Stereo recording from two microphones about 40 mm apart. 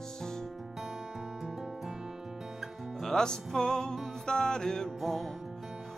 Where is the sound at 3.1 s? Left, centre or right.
Centre.